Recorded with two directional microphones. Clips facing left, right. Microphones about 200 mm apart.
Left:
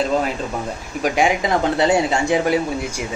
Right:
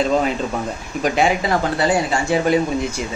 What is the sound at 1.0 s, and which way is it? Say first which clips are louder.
Speech: even; 15° left (ahead or behind).